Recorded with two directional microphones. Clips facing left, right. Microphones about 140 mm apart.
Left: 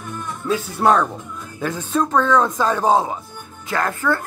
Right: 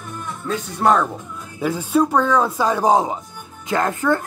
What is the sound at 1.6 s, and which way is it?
Speech, 10° right (ahead or behind).